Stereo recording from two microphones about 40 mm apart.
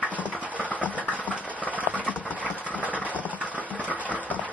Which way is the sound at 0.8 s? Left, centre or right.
Left.